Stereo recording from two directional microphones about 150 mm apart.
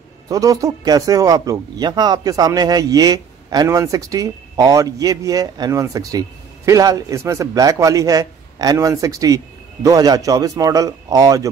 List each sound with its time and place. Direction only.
0.3 s speech: 25° right (ahead or behind)